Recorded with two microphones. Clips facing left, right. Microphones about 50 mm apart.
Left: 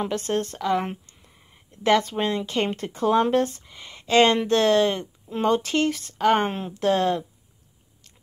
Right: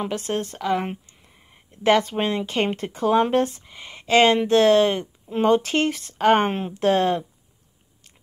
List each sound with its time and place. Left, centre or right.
0.0 s speech: centre